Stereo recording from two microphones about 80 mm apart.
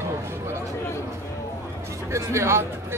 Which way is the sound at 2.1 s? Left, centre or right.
Right.